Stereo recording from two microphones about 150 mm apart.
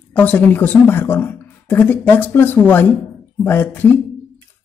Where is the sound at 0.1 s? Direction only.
10° left (ahead or behind).